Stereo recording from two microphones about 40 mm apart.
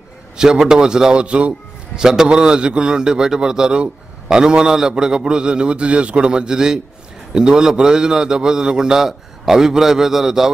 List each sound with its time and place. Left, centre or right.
0.4 s a man's voice: centre
1.2 s a man's voice: right
2.0 s a man's voice: centre